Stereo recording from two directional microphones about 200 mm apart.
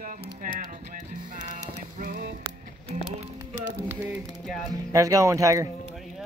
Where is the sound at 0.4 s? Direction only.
45° right (ahead or behind).